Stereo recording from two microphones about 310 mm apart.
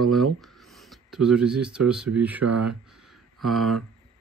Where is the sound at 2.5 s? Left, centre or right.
Right.